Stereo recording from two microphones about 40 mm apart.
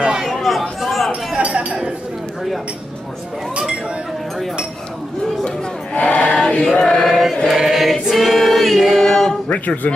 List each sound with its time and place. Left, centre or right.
0.0 s chatter: centre
0.3 s chatter: centre
1.4 s chink: right
5.9 s choir: left
6.7 s choir: centre
7.1 s choir: centre
9.0 s male singing: centre
9.5 s a man's voice: left